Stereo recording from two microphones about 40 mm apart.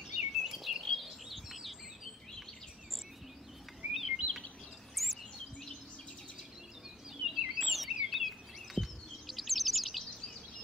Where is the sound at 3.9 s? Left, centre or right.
Centre.